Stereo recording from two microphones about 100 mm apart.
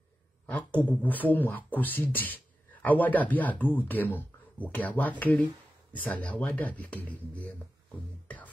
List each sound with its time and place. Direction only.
0.5 s speech: 15° left (ahead or behind)